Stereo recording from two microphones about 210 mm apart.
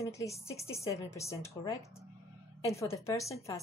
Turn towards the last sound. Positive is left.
turn(degrees=15)  # may be behind; listen again after turning